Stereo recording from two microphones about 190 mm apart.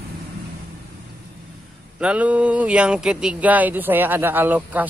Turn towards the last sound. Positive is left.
turn(degrees=-10)  # may be behind; listen again after turning